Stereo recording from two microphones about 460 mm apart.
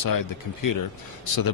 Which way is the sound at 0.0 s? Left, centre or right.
Left.